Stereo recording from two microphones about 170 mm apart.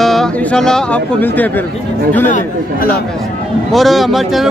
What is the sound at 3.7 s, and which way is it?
Speech, centre (ahead or behind).